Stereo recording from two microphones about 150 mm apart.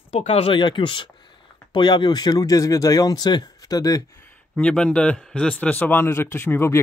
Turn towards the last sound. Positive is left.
turn(degrees=15)  # may be behind; listen again after turning